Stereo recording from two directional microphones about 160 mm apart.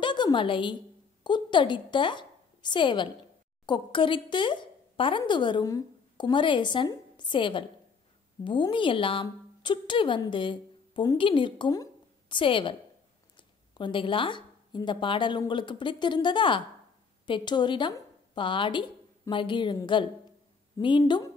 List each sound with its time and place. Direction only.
0.0 s a sound: 30° left (ahead or behind)
1.2 s a woman's voice: 30° left (ahead or behind)
13.7 s a woman's voice: 30° left (ahead or behind)